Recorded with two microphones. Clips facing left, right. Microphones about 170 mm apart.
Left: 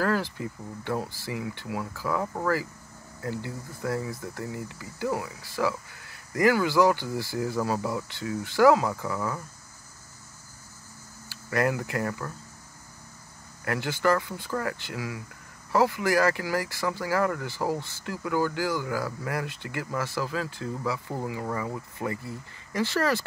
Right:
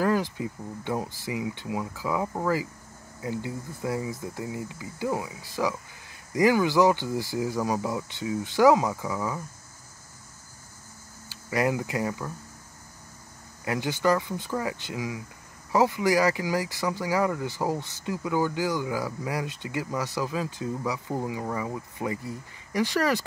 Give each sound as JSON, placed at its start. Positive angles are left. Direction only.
{"t": 0.0, "sound": "speech", "side_deg": -15}
{"t": 11.2, "sound": "speech", "side_deg": -15}
{"t": 13.7, "sound": "speech", "side_deg": -15}